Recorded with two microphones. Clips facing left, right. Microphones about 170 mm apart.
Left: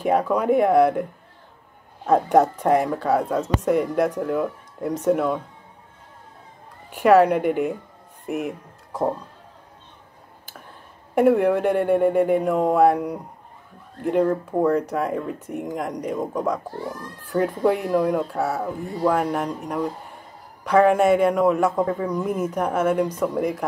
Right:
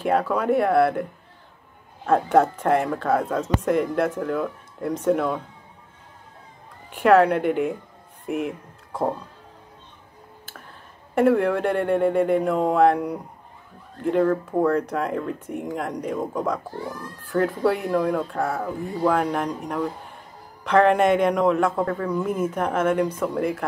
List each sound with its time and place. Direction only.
0.0 s speech: 10° left (ahead or behind)
2.0 s speech: 10° left (ahead or behind)
6.9 s speech: 10° left (ahead or behind)
8.3 s a sound: 10° left (ahead or behind)
11.1 s speech: 10° left (ahead or behind)